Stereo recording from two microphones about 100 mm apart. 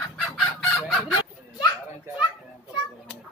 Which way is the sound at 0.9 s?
5° right (ahead or behind).